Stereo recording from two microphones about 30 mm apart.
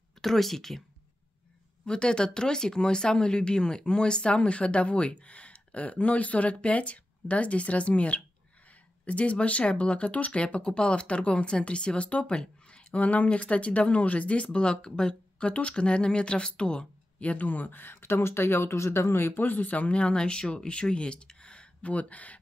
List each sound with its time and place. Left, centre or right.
0.2 s speech: centre
1.9 s speech: left
12.4 s a sound: left
13.0 s speech: left
17.2 s speech: left
19.4 s speech: left
19.8 s speech: left
20.9 s a sound: left
21.9 s speech: left